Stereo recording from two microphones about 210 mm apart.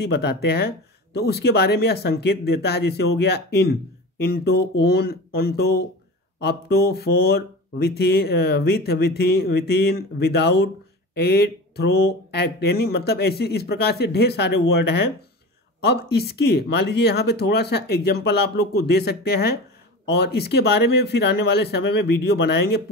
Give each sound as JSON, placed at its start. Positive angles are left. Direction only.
{"t": 0.0, "sound": "speech", "side_deg": 50}